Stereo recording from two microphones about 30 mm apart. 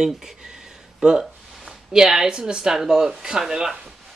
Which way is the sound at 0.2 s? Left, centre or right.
Right.